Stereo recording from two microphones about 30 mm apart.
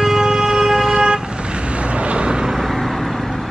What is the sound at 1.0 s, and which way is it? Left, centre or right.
Vehicle, right.